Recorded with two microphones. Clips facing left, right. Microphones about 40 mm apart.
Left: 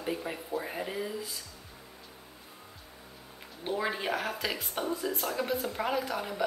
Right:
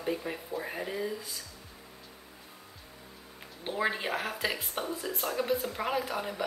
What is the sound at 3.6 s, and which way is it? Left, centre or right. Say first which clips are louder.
Speech: even; centre.